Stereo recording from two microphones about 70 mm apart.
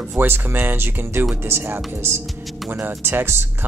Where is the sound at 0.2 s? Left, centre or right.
Right.